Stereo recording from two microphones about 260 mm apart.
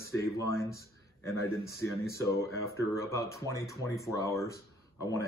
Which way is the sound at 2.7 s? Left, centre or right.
Centre.